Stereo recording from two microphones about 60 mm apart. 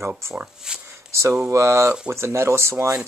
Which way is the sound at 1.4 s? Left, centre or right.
Right.